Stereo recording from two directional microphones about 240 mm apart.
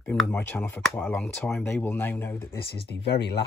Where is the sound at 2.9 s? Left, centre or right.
Left.